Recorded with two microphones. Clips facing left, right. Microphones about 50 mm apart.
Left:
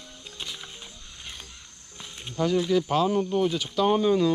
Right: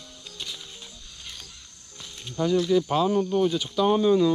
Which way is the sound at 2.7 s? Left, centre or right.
Left.